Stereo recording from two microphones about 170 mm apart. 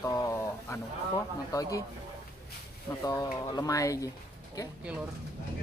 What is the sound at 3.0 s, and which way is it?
Speech, 20° left (ahead or behind).